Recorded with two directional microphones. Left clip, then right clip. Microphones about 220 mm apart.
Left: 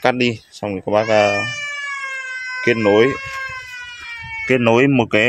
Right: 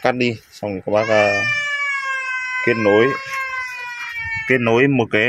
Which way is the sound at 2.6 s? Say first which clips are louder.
Left 1 dB; 15° left (ahead or behind).